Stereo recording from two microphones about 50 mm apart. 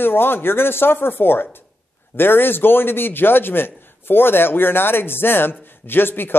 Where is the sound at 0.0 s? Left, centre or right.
Left.